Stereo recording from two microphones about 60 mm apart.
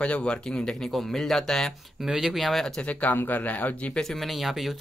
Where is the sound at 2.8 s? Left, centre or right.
Left.